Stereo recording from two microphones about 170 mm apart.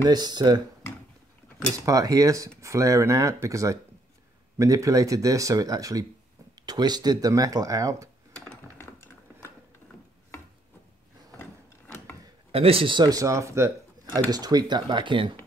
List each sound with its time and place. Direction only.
0.0 s speech: 25° right (ahead or behind)
1.9 s speech: 20° right (ahead or behind)
8.5 s typing: 15° left (ahead or behind)
12.4 s speech: 35° right (ahead or behind)